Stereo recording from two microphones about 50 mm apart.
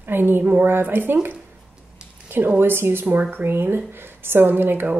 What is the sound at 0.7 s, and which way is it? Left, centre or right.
Speech, right.